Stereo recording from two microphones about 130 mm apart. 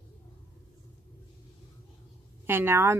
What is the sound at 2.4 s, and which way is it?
Speech, 15° right (ahead or behind).